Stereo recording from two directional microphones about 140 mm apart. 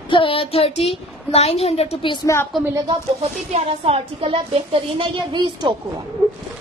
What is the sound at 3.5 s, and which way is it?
A woman's voice, 45° right (ahead or behind).